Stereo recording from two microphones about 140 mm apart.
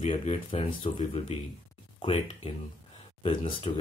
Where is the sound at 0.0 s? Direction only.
45° left (ahead or behind).